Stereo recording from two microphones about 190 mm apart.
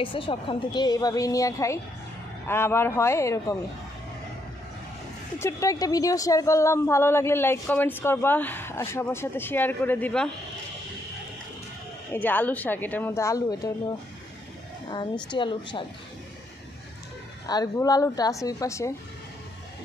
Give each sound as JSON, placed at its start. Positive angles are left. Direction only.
{"t": 0.0, "sound": "a woman's voice", "side_deg": 25}
{"t": 5.4, "sound": "a woman's voice", "side_deg": 15}
{"t": 12.1, "sound": "a woman's voice", "side_deg": 10}
{"t": 15.2, "sound": "a woman's voice", "side_deg": 25}
{"t": 17.5, "sound": "a woman's voice", "side_deg": 20}